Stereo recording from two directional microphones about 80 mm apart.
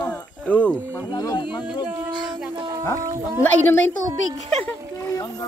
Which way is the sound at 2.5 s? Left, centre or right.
Right.